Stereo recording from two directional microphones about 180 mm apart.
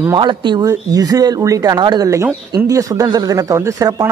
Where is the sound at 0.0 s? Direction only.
20° right (ahead or behind).